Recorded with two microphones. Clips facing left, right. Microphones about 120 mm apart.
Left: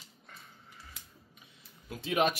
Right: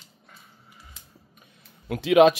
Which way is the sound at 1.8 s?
80° right.